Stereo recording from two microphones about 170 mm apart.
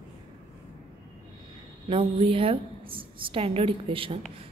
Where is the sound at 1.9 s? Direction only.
35° right (ahead or behind).